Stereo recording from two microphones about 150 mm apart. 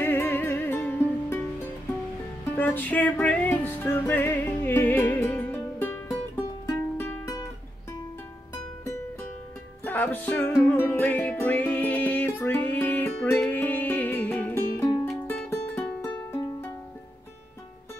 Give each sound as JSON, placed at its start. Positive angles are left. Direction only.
{"t": 0.0, "sound": "music", "side_deg": 15}
{"t": 2.5, "sound": "music", "side_deg": 15}
{"t": 9.8, "sound": "music", "side_deg": 10}